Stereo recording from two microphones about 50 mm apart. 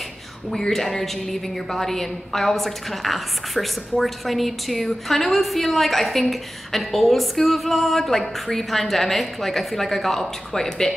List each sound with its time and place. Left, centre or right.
0.5 s a woman's voice: centre